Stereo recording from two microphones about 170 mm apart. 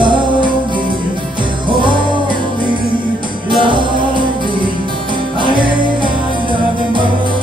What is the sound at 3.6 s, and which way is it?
Music, 30° right (ahead or behind).